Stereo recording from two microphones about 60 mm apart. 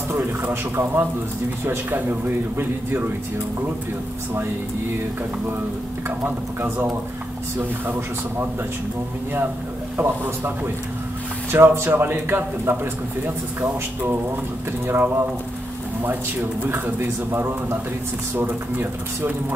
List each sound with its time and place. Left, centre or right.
0.1 s a man's voice: right
6.0 s a man's voice: right
11.5 s a man's voice: right
14.9 s a man's voice: right
16.6 s a man's voice: right